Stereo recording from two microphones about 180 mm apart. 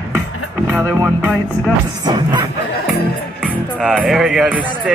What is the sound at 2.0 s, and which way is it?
Music, 25° right (ahead or behind).